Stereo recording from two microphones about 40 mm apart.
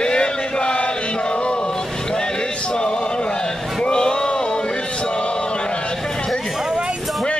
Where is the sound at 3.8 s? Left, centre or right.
Left.